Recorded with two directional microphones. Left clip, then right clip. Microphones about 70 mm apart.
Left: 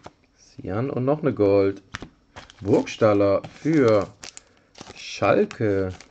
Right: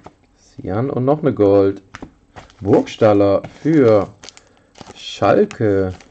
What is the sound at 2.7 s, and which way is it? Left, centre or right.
Speech, centre.